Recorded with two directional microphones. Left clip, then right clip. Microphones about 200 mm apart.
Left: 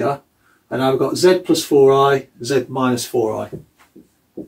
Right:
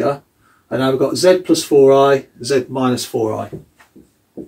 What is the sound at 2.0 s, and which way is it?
Speech, 20° left (ahead or behind).